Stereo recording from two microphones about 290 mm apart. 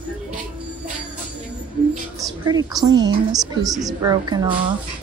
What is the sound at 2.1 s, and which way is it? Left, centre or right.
Speech, centre.